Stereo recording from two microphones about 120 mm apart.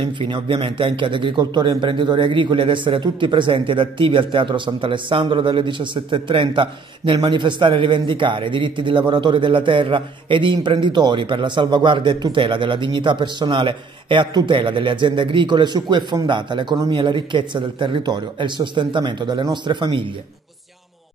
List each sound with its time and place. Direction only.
0.0 s a man's voice: 45° right (ahead or behind)